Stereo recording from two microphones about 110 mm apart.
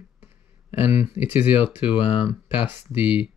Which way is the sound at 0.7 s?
60° left (ahead or behind).